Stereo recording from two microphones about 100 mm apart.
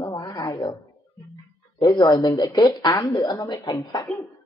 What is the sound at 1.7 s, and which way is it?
Speech, 50° left (ahead or behind).